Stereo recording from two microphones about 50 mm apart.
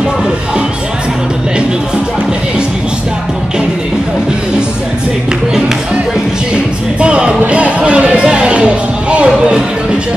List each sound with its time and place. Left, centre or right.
6.5 s music: centre